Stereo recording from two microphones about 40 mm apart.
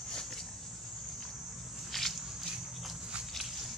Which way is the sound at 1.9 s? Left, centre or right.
Centre.